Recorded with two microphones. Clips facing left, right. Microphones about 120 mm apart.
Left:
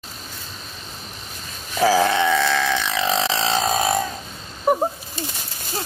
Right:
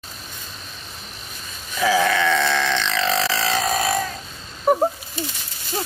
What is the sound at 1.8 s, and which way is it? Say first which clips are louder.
Sheep: left 2 dB; 35° left (ahead or behind).